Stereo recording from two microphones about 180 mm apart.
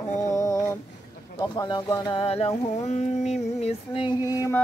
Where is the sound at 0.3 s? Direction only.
20° left (ahead or behind); by 3.3 s 40° left (ahead or behind).